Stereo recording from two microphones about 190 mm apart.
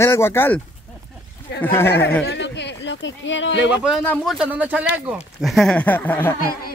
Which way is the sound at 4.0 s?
10° left (ahead or behind).